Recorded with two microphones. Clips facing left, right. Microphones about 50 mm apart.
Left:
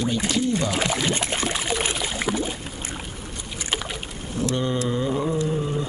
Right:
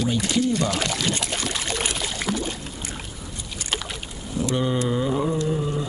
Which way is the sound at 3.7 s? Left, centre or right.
Centre.